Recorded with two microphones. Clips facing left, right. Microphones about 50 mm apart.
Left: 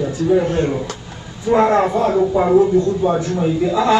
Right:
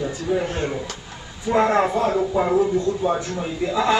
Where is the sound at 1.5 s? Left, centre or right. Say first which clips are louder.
Left 4 dB; centre.